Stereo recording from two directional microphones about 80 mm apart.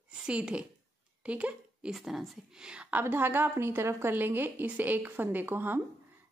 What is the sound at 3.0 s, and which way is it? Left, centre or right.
A woman's voice, right.